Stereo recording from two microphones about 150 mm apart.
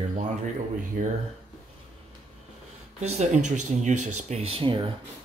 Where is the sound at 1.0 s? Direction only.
60° right (ahead or behind).